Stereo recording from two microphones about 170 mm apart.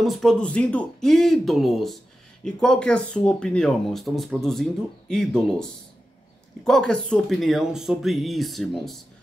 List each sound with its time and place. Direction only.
0.0 s speech: centre (ahead or behind)